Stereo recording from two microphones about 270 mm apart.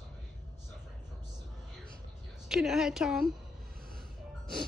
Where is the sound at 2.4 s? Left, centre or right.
Centre.